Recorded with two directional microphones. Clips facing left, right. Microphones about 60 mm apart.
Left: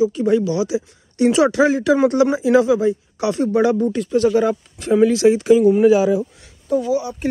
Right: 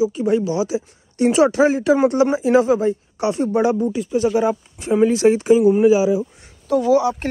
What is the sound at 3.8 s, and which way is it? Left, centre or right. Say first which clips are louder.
Speech: left 2 dB; centre.